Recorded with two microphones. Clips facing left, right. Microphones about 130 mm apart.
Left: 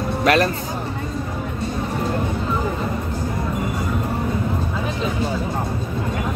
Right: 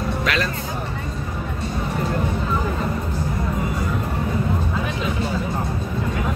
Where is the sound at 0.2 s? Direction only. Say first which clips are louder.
Left 9 dB; 45° left (ahead or behind).